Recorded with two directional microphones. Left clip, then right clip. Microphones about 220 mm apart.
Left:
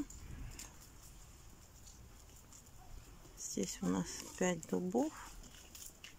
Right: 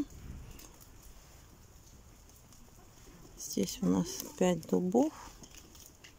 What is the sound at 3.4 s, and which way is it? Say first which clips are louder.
Speech: right 6 dB; 10° right (ahead or behind).